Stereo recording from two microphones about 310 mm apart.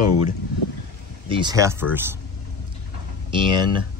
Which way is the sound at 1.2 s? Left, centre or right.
Centre.